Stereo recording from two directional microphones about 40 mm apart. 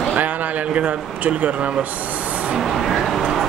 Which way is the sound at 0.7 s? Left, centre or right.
Right.